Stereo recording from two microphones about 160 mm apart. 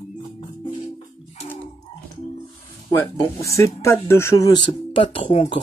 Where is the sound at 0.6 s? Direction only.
35° left (ahead or behind).